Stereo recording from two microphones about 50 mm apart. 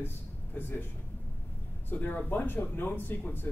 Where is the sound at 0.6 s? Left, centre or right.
Left.